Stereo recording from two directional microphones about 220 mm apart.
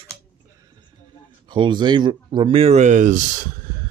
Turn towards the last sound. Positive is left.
turn(degrees=-35)  # may be behind; listen again after turning